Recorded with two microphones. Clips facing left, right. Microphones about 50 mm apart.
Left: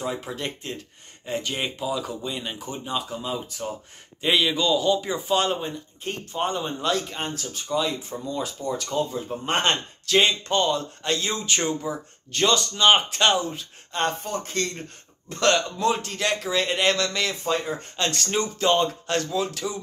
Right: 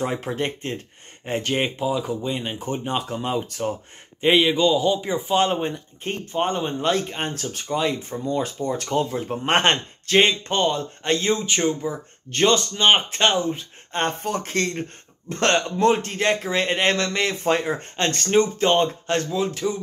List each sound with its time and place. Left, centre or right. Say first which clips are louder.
0.0 s speech: right 4 dB; right
0.4 s speech: right 5 dB; right
2.6 s speech: right 3 dB; right
4.2 s speech: right 5 dB; right
8.9 s speech: right 4 dB; right
10.0 s speech: right 3 dB; right
11.5 s speech: right 3 dB; centre
12.3 s speech: right 3 dB; right
14.2 s speech: right 4 dB; right
14.8 s speech: right 7 dB; right
17.4 s speech: right 4 dB; right